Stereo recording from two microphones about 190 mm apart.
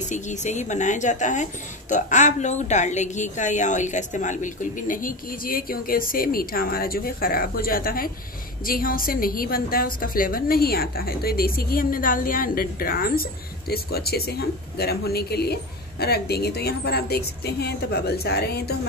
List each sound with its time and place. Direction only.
0.1 s a woman's voice: 40° left (ahead or behind); by 18.8 s 60° left (ahead or behind)